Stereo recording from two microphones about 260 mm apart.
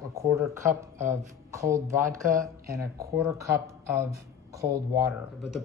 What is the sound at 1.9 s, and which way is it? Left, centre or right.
Speech, right.